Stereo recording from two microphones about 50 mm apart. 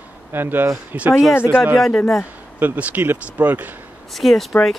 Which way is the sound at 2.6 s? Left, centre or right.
Right.